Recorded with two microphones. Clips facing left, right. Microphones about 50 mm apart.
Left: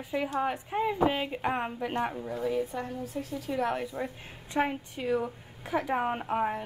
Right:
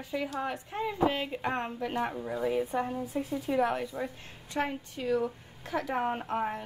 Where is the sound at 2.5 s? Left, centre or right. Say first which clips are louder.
Right 2 dB; centre.